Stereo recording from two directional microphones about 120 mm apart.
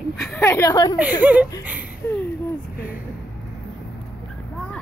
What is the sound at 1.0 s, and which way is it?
Speech, 15° right (ahead or behind).